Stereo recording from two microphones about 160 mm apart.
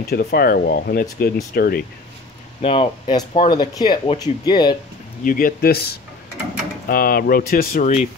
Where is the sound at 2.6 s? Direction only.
35° left (ahead or behind).